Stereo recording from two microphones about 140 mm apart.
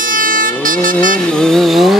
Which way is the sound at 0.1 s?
75° right (ahead or behind).